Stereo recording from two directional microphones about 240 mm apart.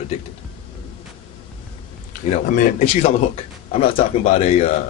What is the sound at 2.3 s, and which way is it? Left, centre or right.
Speech, left.